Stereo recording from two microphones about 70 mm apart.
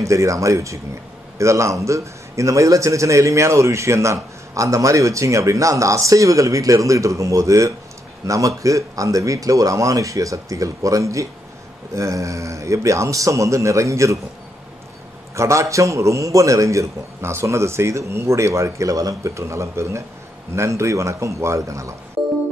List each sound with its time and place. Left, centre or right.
0.0 s a man's voice: right
15.3 s a man's voice: right